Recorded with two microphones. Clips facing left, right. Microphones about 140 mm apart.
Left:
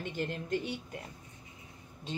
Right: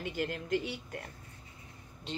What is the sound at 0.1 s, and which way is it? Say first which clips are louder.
A woman's voice: right 1 dB; 20° left (ahead or behind).